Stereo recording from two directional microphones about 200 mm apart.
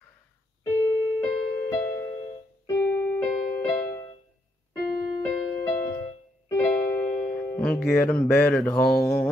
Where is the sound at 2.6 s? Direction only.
10° left (ahead or behind).